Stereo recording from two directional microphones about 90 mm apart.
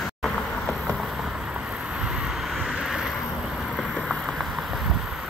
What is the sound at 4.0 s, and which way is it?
Boat, centre (ahead or behind).